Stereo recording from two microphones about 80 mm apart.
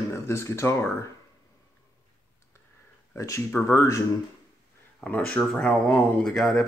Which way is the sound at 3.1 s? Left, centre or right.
Left.